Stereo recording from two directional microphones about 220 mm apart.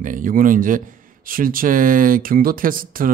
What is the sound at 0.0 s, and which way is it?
A man's voice, 35° right (ahead or behind).